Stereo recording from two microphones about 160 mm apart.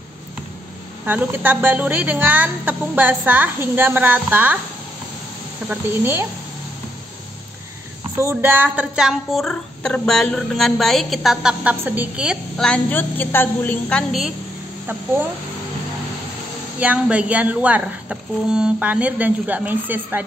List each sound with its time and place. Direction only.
1.0 s a woman's voice: 10° right (ahead or behind)
5.7 s a woman's voice: 15° right (ahead or behind)
8.2 s speech: 15° right (ahead or behind)
12.6 s a woman's voice: 10° left (ahead or behind)
16.8 s a woman's voice: 10° right (ahead or behind)